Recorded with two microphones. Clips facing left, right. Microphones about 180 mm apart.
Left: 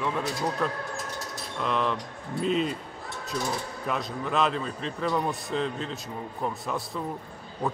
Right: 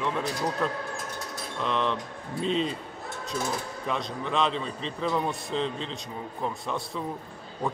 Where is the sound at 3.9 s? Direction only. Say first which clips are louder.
Left 1 dB; 5° left (ahead or behind).